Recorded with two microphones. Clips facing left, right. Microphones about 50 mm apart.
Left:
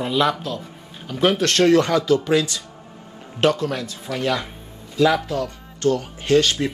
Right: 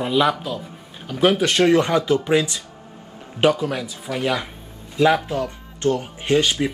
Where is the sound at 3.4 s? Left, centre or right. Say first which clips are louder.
Right 1 dB; centre.